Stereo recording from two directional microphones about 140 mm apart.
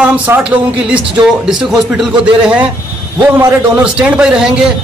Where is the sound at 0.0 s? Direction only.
10° right (ahead or behind).